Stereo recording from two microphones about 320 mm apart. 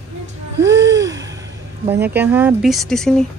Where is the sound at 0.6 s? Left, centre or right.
Right.